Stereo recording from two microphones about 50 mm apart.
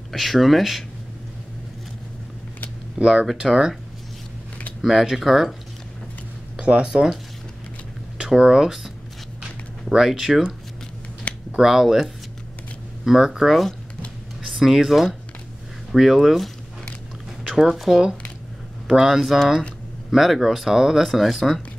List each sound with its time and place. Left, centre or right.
0.1 s speech: centre
3.0 s speech: centre
4.8 s speech: centre
6.6 s speech: right
6.9 s speech: centre
8.2 s speech: centre
11.3 s a sound: left
11.6 s speech: centre
17.5 s speech: centre